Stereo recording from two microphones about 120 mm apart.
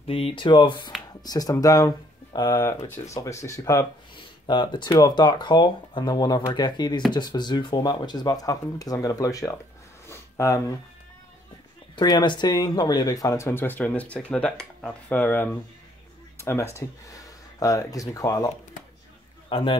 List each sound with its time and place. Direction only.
0.0 s speech: 50° left (ahead or behind); by 3.8 s 25° left (ahead or behind)
4.5 s speech: 40° left (ahead or behind)
10.0 s a sound: 25° left (ahead or behind)
11.9 s speech: 35° left (ahead or behind)
19.5 s speech: 45° left (ahead or behind)